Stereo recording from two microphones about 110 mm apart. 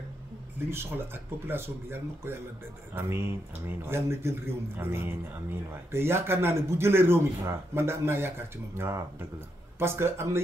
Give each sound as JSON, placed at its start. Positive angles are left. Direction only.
{"t": 0.7, "sound": "speech", "side_deg": -20}